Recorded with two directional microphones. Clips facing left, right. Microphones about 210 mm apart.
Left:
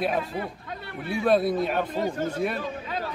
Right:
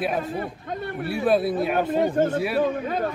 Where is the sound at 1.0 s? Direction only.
5° right (ahead or behind).